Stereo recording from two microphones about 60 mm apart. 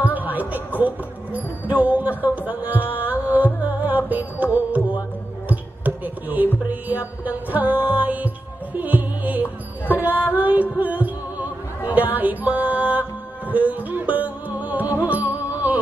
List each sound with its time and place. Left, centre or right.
0.1 s a sound: right
0.7 s speech: right
3.0 s music: right
5.5 s a sound: right
6.7 s speech: right
8.7 s music: right
11.9 s speech: right
13.5 s music: right